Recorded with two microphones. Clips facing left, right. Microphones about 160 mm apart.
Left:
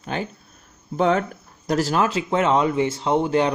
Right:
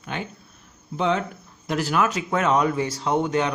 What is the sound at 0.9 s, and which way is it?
Speech, 45° left (ahead or behind).